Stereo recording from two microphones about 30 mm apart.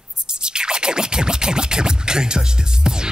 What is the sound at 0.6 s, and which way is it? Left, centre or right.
Speech, right.